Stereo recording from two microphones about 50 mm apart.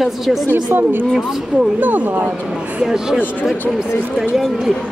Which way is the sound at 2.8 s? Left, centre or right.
Centre.